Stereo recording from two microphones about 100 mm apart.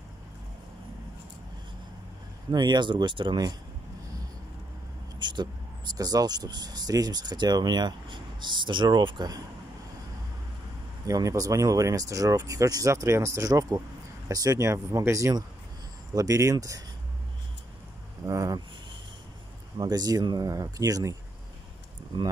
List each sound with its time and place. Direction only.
2.5 s speech: 50° right (ahead or behind)
5.2 s speech: 45° right (ahead or behind)
11.1 s speech: 35° right (ahead or behind)
18.2 s a sound: 35° right (ahead or behind)
19.8 s speech: 40° right (ahead or behind)